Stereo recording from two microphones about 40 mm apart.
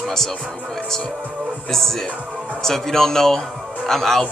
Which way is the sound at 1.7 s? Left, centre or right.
Centre.